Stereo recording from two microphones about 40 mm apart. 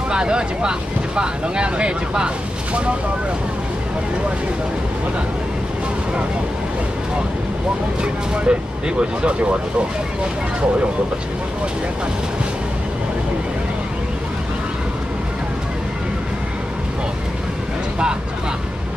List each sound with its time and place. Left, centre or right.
0.1 s speech: right
8.0 s speech: right